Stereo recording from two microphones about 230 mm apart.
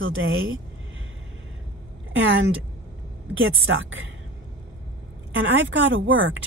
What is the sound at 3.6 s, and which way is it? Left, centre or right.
Speech, right.